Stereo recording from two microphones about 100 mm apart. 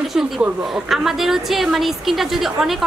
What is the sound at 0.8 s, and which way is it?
A woman's voice, 5° right (ahead or behind).